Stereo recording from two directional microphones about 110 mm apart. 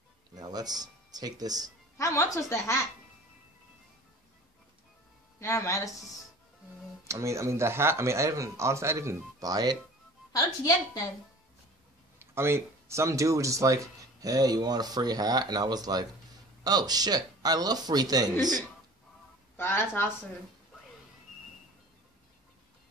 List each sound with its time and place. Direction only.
0.4 s speech: 35° right (ahead or behind)
2.0 s a woman's voice: 30° left (ahead or behind)
5.4 s a woman's voice: 25° left (ahead or behind)
7.1 s speech: 25° right (ahead or behind)
10.3 s a woman's voice: 35° left (ahead or behind)
12.2 s speech: 20° right (ahead or behind)
19.5 s a woman's voice: 20° left (ahead or behind)